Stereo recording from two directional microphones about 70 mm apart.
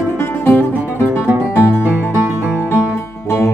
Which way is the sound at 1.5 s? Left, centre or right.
Left.